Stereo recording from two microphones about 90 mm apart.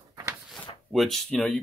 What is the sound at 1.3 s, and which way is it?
Speech, 15° left (ahead or behind).